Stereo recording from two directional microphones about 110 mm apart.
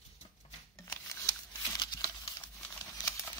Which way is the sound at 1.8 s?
35° left (ahead or behind).